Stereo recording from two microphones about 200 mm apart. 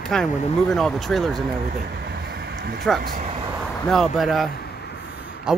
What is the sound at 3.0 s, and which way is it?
Speech, 45° right (ahead or behind).